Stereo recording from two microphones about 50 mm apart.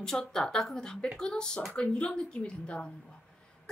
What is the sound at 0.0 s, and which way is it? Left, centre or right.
A woman's voice, centre.